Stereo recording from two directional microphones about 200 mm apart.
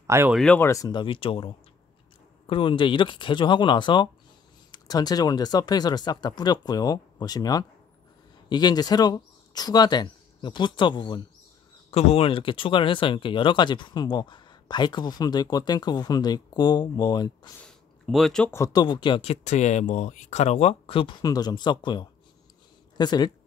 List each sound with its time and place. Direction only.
0.0 s speech: 10° right (ahead or behind)
0.4 s speech: 10° left (ahead or behind)
17.6 s speech: centre (ahead or behind); by 23.3 s 20° left (ahead or behind)